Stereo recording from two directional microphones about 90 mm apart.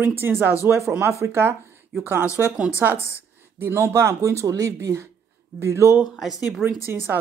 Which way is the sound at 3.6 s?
25° right (ahead or behind).